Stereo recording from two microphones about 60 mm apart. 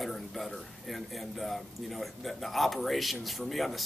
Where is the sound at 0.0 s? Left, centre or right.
Centre.